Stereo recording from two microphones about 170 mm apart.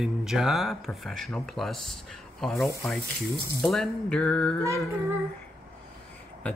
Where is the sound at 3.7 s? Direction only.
5° left (ahead or behind).